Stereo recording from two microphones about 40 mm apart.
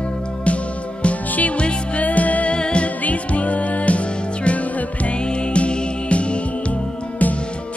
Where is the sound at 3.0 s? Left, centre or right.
Left.